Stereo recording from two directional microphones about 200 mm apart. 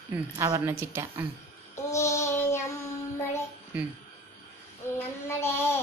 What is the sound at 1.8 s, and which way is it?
Child singing, 15° left (ahead or behind).